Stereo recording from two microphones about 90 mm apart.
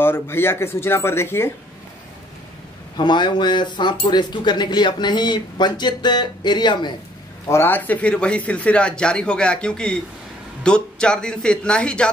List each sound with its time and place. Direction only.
0.0 s speech: 25° left (ahead or behind)
3.0 s speech: 55° left (ahead or behind)
7.4 s a man's voice: 25° left (ahead or behind); by 12.1 s 10° left (ahead or behind)